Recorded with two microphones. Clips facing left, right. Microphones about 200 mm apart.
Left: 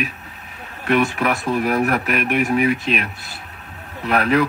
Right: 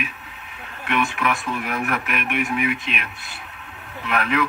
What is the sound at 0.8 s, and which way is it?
A man's voice, 40° left (ahead or behind).